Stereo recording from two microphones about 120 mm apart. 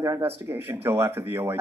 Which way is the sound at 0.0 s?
25° right (ahead or behind).